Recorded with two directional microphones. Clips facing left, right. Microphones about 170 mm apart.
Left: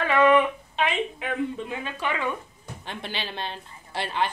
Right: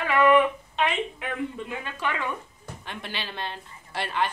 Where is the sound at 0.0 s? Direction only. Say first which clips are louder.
Even; 25° left (ahead or behind).